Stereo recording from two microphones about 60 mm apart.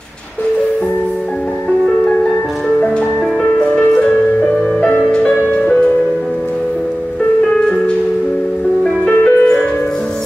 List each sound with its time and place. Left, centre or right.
3.5 s music: centre
9.0 s music: centre